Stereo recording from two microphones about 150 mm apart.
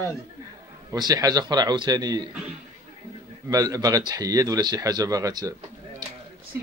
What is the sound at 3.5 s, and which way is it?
Speech, 25° right (ahead or behind).